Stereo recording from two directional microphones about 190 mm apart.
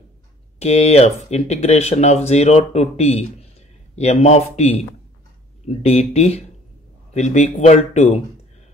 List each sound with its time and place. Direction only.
0.6 s speech: 35° left (ahead or behind)